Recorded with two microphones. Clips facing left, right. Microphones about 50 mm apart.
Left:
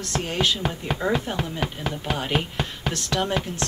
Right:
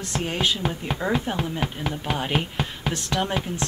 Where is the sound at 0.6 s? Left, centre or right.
Centre.